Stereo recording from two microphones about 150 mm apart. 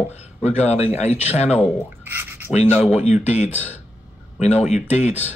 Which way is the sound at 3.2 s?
45° left (ahead or behind).